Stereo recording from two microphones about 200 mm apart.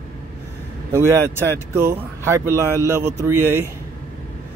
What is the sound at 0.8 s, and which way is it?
Speech, 15° right (ahead or behind).